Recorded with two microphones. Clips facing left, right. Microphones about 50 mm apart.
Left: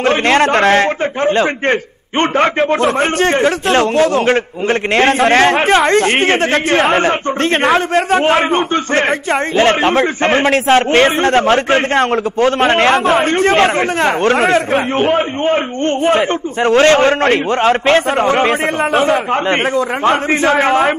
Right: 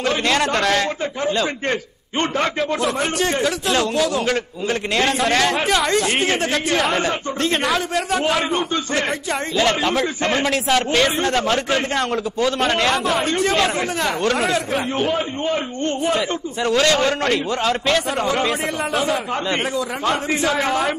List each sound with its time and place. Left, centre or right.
0.0 s a man's voice: left